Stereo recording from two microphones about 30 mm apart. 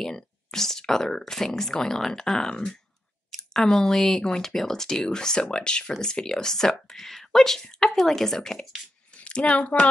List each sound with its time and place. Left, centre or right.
0.0 s speech: centre
9.3 s speech: left